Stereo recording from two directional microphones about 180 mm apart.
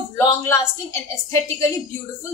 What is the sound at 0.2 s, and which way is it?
Speech, 15° left (ahead or behind).